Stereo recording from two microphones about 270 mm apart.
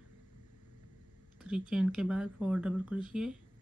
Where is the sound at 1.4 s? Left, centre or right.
Centre.